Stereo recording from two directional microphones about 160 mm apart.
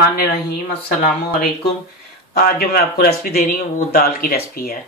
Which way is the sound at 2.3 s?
75° left (ahead or behind).